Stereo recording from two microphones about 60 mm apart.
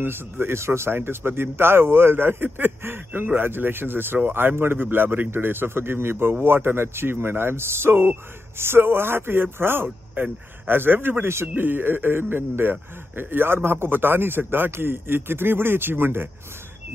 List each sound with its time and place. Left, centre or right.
0.0 s speech: right